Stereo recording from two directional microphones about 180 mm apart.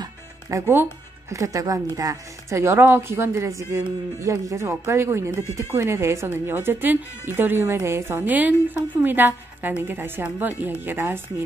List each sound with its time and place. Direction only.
0.0 s music: 15° right (ahead or behind)
1.3 s speech: 20° right (ahead or behind)